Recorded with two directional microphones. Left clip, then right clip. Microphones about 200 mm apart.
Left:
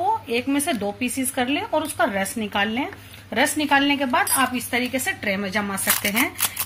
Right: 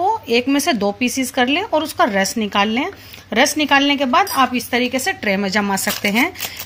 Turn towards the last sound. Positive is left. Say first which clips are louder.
# right 4 dB
turn(degrees=-45)  # may be behind; listen again after turning